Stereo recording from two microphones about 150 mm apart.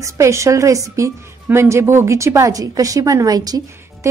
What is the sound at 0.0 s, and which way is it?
A woman's voice, 20° right (ahead or behind).